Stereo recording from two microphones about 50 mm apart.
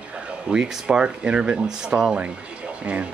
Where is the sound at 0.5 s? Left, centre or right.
Centre.